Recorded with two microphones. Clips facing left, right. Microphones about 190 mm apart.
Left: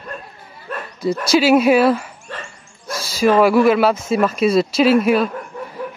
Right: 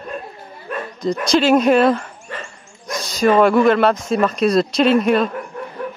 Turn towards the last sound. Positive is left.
turn(degrees=5)  # may be behind; listen again after turning